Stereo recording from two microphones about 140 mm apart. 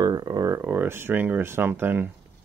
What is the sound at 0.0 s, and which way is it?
Speech, 30° right (ahead or behind).